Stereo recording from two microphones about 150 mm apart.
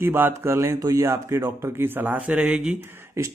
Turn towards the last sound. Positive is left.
turn(degrees=-20)  # may be behind; listen again after turning